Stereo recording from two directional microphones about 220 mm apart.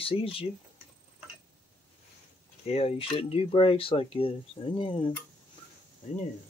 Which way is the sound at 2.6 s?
25° left (ahead or behind).